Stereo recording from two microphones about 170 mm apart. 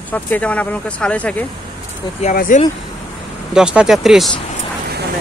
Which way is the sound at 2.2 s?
50° left (ahead or behind).